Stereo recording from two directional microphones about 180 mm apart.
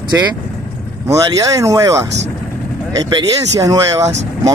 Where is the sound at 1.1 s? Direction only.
15° right (ahead or behind).